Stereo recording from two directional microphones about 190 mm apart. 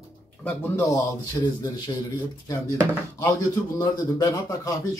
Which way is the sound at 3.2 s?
15° left (ahead or behind).